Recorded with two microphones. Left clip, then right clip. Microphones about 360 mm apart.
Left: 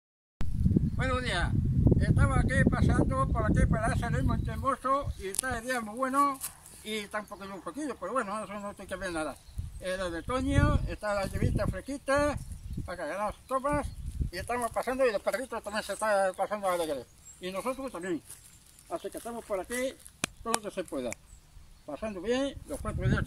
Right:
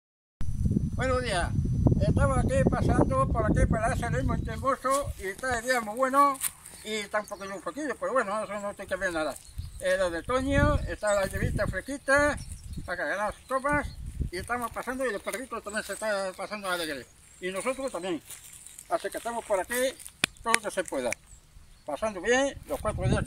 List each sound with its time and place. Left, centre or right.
0.4 s a sound: centre
0.9 s speech: centre
14.3 s speech: left; by 18.2 s centre
18.9 s speech: right
20.2 s a sound: centre
20.6 s speech: right
22.9 s speech: centre